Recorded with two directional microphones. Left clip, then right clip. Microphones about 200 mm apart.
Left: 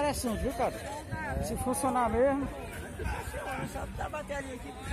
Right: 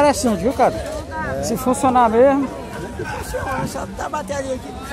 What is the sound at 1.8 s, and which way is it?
Speech, 5° right (ahead or behind).